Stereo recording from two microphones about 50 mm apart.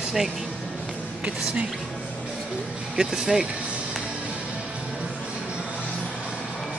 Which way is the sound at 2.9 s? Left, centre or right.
Centre.